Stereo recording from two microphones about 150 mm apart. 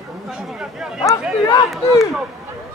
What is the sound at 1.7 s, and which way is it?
Speech, centre (ahead or behind).